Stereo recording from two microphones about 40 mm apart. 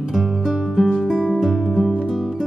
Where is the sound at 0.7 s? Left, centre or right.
Centre.